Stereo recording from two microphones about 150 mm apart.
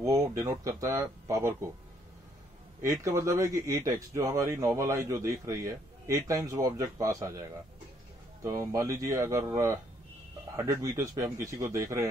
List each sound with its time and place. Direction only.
0.0 s speech: 20° right (ahead or behind)
2.8 s speech: 20° right (ahead or behind)